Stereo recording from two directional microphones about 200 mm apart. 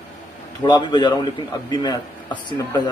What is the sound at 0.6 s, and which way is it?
Speech, 20° left (ahead or behind).